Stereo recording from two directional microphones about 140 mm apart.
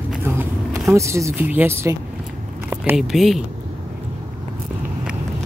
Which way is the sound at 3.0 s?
Centre (ahead or behind).